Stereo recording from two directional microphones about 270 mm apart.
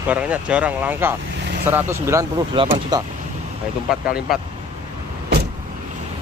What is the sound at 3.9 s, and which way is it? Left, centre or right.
Speech, centre.